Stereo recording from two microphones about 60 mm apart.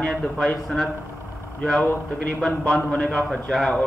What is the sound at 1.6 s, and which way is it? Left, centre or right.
A man's voice, centre.